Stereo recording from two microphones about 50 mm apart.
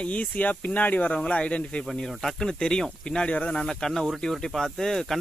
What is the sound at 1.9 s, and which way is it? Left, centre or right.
Speech, centre.